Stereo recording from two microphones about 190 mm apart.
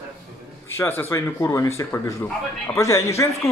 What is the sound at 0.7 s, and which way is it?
Speech, 10° left (ahead or behind).